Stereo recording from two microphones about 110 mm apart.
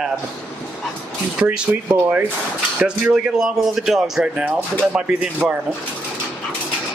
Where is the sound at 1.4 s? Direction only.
10° right (ahead or behind).